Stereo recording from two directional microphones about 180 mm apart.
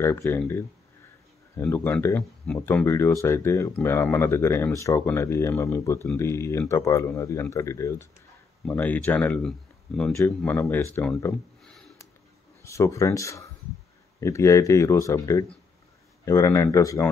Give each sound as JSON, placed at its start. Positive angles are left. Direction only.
{"t": 0.0, "sound": "speech", "side_deg": 15}
{"t": 1.6, "sound": "speech", "side_deg": 10}
{"t": 11.6, "sound": "a sound", "side_deg": 0}
{"t": 12.6, "sound": "speech", "side_deg": 15}